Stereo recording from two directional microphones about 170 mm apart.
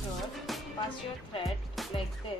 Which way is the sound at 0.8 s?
30° left (ahead or behind).